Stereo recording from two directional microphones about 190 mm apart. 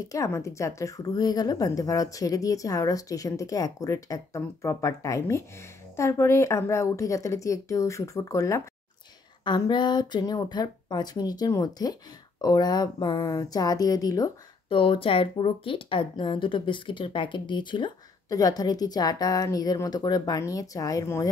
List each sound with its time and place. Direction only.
0.0 s a woman's voice: 15° left (ahead or behind)